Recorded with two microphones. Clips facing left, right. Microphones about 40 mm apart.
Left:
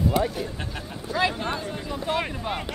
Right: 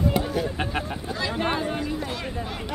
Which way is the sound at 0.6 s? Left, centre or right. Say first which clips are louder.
Right 6 dB; right.